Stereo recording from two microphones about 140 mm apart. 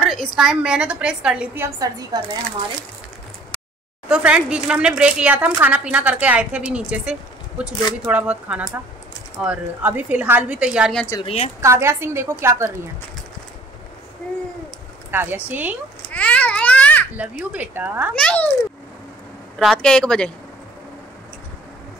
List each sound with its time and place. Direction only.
0.0 s speech: 5° left (ahead or behind)
4.1 s speech: 5° right (ahead or behind)
11.2 s a woman's voice: 50° left (ahead or behind)
11.6 s a woman's voice: 20° right (ahead or behind)
15.0 s speech: 15° right (ahead or behind)
16.1 s babbling: 10° left (ahead or behind)
17.1 s speech: 10° right (ahead or behind)
18.1 s a child's voice: 10° left (ahead or behind)
19.6 s speech: 5° left (ahead or behind)